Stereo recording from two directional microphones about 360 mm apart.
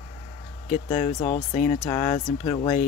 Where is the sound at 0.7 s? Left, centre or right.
Centre.